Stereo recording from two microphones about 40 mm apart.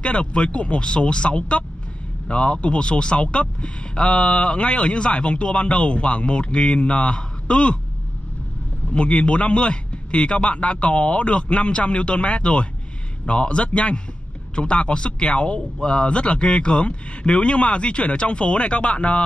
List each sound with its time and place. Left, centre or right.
0.0 s speech: left
8.9 s speech: left